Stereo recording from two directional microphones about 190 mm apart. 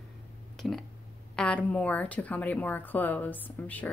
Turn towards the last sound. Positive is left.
turn(degrees=10)  # may be behind; listen again after turning